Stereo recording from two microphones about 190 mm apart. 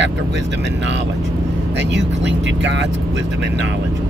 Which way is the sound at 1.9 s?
70° right (ahead or behind).